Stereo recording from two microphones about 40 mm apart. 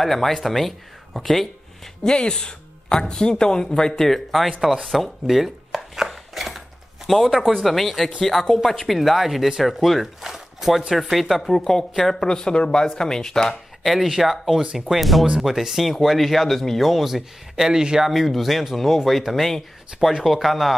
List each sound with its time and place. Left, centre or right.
0.0 s speech: centre
2.0 s speech: left
4.8 s chopping: centre
7.3 s speech: centre
8.8 s speech: centre
10.2 s a sound: centre
10.9 s speech: centre
12.3 s speech: centre
13.8 s speech: centre
18.0 s speech: centre
20.1 s speech: centre